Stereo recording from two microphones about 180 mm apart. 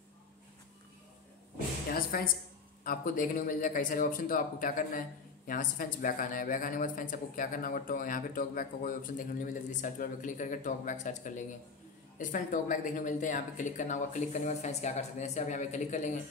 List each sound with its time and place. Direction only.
1.9 s speech: 55° left (ahead or behind)